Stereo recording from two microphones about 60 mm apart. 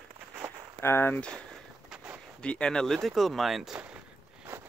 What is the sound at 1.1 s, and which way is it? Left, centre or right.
Speech, centre.